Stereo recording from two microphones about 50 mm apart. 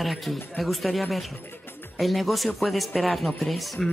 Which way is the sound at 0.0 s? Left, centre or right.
Centre.